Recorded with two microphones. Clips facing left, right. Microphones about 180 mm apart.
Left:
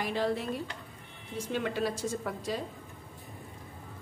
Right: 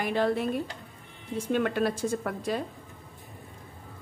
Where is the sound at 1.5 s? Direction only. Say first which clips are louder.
Right 5 dB; 55° right (ahead or behind).